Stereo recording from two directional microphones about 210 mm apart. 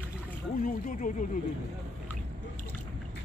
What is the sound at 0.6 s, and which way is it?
Speech, 40° left (ahead or behind).